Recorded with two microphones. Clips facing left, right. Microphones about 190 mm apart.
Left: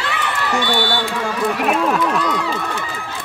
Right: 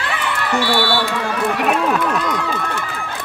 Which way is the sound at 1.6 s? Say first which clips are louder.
Even; centre (ahead or behind).